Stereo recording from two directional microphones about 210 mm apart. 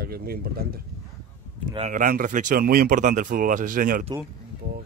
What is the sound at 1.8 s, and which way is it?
Speech, 40° right (ahead or behind).